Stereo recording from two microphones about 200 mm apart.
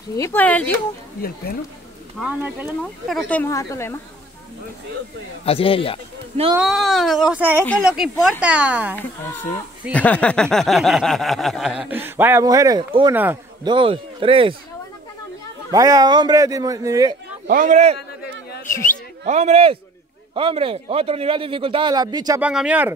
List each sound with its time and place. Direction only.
0.1 s speech: 10° left (ahead or behind)
2.1 s a man's voice: 5° right (ahead or behind)
2.8 s speech: 5° left (ahead or behind)
5.4 s speech: 30° left (ahead or behind)
6.6 s a sound: centre (ahead or behind)
8.9 s speech: 10° left (ahead or behind)
9.9 s a sound: 5° left (ahead or behind); by 13.1 s 20° right (ahead or behind)
13.1 s a man's voice: 10° right (ahead or behind)
13.7 s a man's voice: 25° right (ahead or behind)
15.7 s a man's voice: 15° right (ahead or behind)
17.5 s speech: 40° right (ahead or behind)
19.2 s a man's voice: 35° right (ahead or behind); by 22.4 s 20° right (ahead or behind)
22.4 s a man's voice: 5° right (ahead or behind)